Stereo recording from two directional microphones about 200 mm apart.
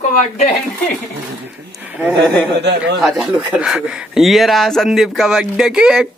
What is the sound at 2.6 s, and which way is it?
Speech, 60° right (ahead or behind).